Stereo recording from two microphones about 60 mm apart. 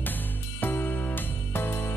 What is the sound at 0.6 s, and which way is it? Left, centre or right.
Music, left.